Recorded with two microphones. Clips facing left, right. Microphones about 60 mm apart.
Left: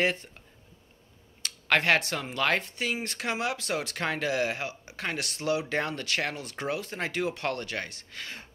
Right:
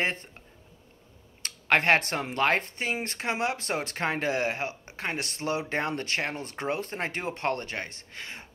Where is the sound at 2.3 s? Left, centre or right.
Right.